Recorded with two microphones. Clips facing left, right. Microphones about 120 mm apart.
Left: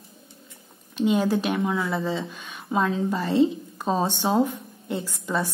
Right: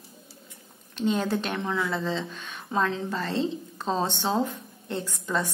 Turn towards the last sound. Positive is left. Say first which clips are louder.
# left 2 dB
turn(degrees=10)  # may be behind; listen again after turning